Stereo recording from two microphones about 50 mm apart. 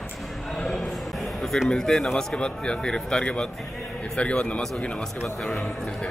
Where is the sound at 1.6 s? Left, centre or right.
Centre.